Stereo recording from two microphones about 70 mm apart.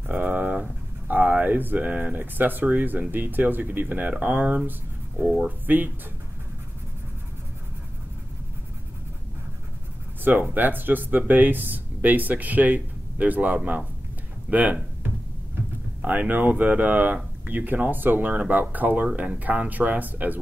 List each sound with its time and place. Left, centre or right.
0.0 s speech: right
5.7 s speech: right
10.2 s speech: right
16.0 s speech: right